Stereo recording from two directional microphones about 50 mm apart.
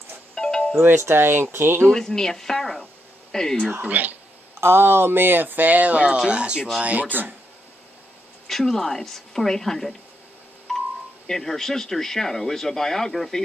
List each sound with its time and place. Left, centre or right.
0.3 s music: centre
0.7 s speech: right
1.9 s speech: centre
3.8 s speech: right
4.6 s speech: right; by 6.7 s centre
6.8 s speech: right
8.5 s speech: centre
11.2 s speech: centre